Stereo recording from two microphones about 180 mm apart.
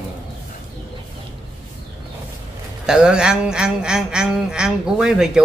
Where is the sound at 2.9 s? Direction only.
5° right (ahead or behind).